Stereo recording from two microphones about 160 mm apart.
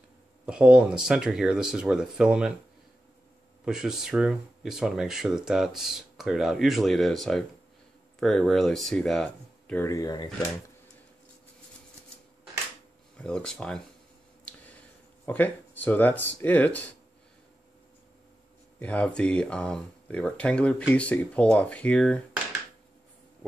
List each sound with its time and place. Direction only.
0.5 s speech: 5° right (ahead or behind)
3.6 s speech: 5° right (ahead or behind)
9.8 s speech: 20° left (ahead or behind)
13.2 s speech: 5° left (ahead or behind)
14.5 s a sound: 10° left (ahead or behind)
15.2 s speech: 10° left (ahead or behind)
18.8 s speech: 10° left (ahead or behind)